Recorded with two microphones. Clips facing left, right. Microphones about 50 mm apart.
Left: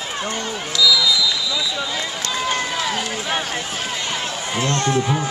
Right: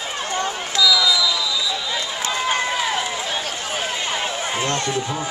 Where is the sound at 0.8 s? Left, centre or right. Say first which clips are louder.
Even; centre.